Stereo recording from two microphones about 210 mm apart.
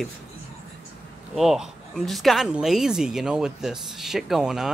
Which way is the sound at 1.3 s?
Centre (ahead or behind).